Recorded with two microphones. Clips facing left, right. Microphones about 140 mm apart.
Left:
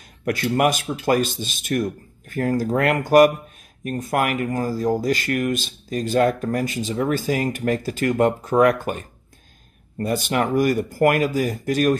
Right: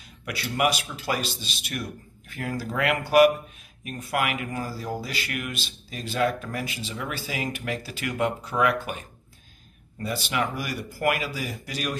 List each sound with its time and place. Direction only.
0.2 s speech: 45° left (ahead or behind)